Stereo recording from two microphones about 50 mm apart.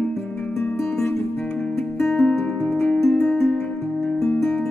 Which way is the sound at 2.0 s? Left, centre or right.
Centre.